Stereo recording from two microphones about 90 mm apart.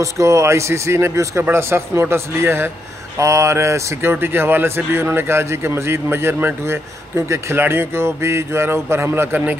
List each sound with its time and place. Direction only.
0.0 s speech: 35° right (ahead or behind)